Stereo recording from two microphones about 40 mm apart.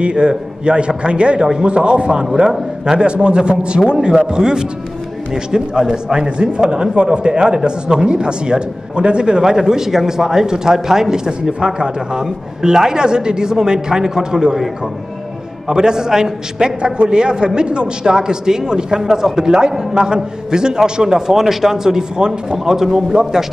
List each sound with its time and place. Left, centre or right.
0.0 s a man's voice: right
3.0 s a man's voice: right
15.7 s a man's voice: centre